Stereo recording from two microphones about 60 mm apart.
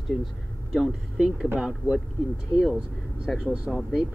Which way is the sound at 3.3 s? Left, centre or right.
Centre.